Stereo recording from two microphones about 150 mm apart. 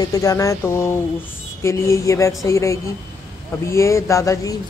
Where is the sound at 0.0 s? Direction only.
25° left (ahead or behind).